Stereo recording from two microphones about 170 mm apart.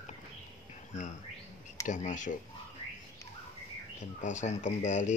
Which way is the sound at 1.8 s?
45° left (ahead or behind).